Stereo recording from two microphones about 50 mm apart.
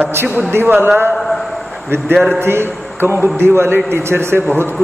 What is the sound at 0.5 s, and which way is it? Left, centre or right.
Speech, right.